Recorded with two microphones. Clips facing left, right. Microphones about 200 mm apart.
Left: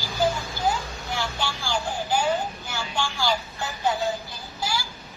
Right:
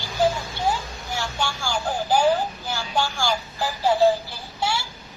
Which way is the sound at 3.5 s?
30° right (ahead or behind).